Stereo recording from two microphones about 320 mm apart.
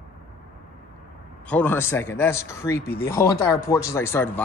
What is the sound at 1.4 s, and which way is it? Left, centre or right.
Speech, centre.